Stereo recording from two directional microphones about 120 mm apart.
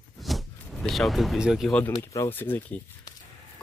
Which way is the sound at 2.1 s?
20° left (ahead or behind).